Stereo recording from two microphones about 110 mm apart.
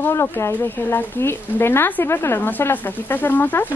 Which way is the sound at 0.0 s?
25° left (ahead or behind).